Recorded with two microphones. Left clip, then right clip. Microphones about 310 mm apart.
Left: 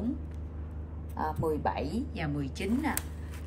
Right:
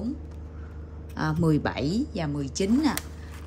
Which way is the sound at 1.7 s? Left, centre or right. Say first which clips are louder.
Right 5 dB; right.